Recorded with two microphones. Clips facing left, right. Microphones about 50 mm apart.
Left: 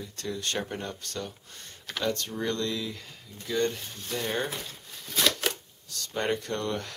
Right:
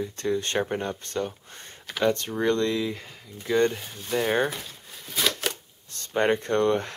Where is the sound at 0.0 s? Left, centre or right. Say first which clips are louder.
Right 7 dB; right; by 4.3 s centre.